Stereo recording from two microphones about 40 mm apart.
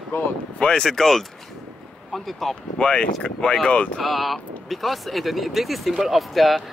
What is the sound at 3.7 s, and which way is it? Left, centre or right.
Speech, left.